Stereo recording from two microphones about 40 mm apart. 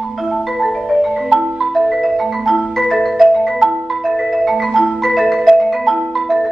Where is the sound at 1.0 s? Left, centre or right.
Centre.